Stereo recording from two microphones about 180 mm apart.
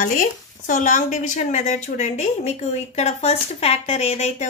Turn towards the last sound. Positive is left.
turn(degrees=40)  # may be behind; listen again after turning